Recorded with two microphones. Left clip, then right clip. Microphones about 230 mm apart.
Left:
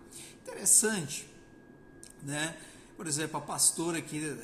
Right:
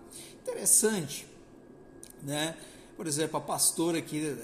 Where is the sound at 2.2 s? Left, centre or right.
Centre.